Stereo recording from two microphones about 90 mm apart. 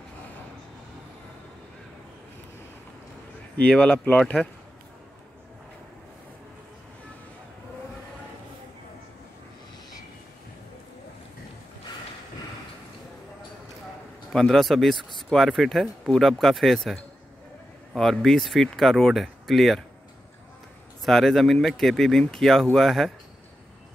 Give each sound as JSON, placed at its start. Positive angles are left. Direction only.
{"t": 3.5, "sound": "speech", "side_deg": 15}
{"t": 14.3, "sound": "speech", "side_deg": 5}
{"t": 21.0, "sound": "speech", "side_deg": 5}